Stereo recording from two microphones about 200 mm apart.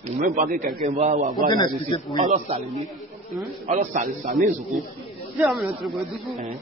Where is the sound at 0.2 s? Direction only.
40° right (ahead or behind).